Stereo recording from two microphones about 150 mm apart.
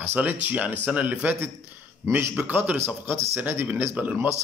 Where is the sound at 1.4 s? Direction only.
15° right (ahead or behind).